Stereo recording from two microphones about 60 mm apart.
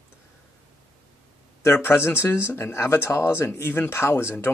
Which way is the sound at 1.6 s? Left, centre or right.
Left.